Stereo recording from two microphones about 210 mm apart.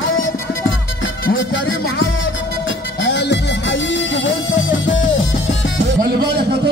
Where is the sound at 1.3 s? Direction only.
65° left (ahead or behind).